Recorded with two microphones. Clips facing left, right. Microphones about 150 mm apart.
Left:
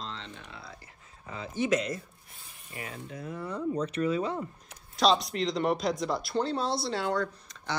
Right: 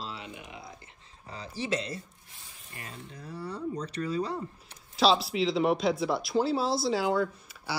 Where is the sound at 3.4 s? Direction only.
35° right (ahead or behind).